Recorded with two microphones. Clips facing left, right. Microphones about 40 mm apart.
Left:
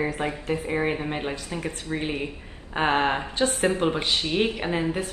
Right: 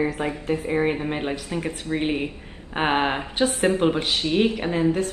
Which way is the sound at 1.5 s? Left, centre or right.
Right.